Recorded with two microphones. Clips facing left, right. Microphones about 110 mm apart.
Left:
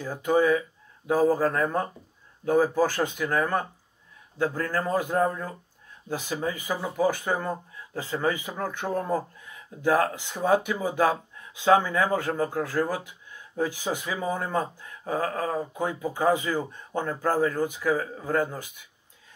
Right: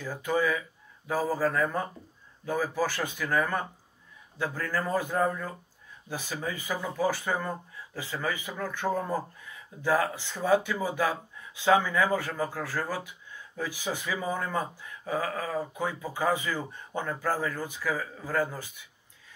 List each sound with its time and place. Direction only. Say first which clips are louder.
0.0 s speech: left 5 dB; 20° left (ahead or behind)
4.7 s speech: left 2 dB; 20° left (ahead or behind)
15.0 s a sound: left 3 dB; 45° left (ahead or behind)
15.5 s speech: left 2 dB; 15° left (ahead or behind)
16.9 s speech: left 4 dB; 35° left (ahead or behind)
17.2 s speech: left 8 dB; 20° left (ahead or behind)